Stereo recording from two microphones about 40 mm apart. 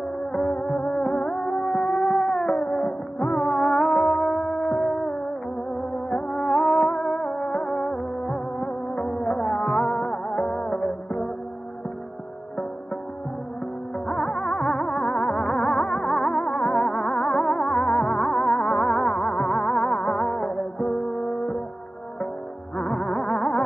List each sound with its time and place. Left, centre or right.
0.3 s music: left
2.5 s music: left
14.0 s music: centre
22.8 s music: centre